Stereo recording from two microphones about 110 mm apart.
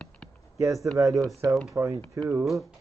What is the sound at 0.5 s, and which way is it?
Speech, 30° right (ahead or behind).